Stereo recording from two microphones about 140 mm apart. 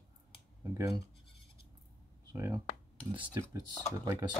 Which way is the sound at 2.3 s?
20° right (ahead or behind).